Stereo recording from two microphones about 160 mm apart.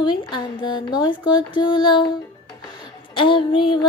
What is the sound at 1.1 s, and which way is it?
Music, 30° left (ahead or behind).